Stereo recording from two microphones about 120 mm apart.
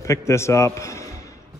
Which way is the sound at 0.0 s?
25° left (ahead or behind).